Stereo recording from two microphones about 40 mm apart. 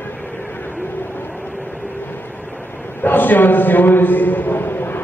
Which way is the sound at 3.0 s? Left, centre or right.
Left.